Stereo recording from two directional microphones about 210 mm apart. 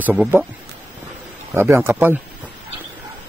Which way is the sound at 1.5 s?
10° right (ahead or behind).